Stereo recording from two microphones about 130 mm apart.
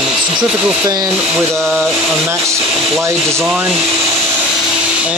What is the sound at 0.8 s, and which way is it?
Speech, 30° right (ahead or behind).